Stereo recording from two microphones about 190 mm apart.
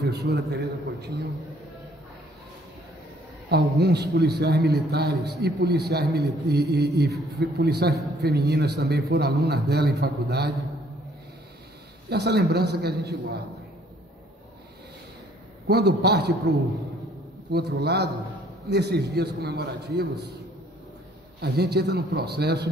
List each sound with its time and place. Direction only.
0.0 s a man's voice: 60° right (ahead or behind)
3.4 s a man's voice: 60° right (ahead or behind)
12.1 s a man's voice: 60° right (ahead or behind)
15.6 s a man's voice: 60° right (ahead or behind)
21.4 s a man's voice: 60° right (ahead or behind)